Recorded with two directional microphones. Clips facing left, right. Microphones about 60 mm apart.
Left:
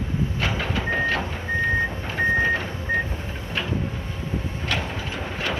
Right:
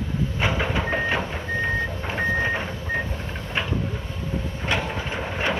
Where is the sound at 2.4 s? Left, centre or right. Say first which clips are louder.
Left 2 dB; centre.